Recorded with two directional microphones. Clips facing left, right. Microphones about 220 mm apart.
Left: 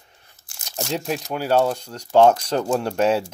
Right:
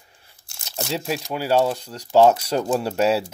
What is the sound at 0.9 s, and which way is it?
Speech, 5° right (ahead or behind).